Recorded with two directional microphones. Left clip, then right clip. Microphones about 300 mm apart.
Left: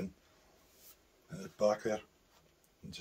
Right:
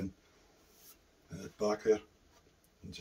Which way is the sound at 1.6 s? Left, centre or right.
Left.